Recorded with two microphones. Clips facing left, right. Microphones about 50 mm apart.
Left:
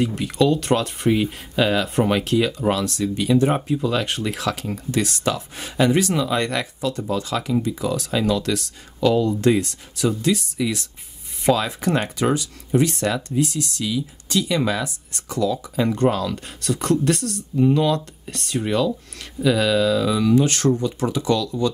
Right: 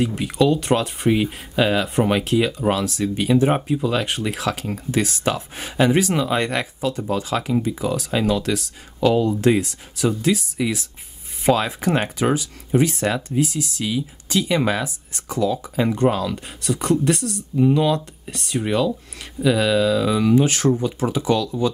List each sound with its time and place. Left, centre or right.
0.0 s speech: centre
13.8 s speech: right
15.9 s speech: centre
20.2 s speech: right
20.4 s speech: centre